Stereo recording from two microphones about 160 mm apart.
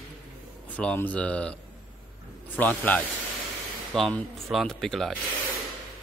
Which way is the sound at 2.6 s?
10° left (ahead or behind).